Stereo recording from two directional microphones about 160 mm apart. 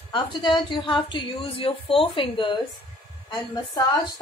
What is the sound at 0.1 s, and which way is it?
A woman's voice, 30° left (ahead or behind).